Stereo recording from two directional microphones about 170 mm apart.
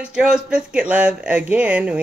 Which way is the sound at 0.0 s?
5° right (ahead or behind).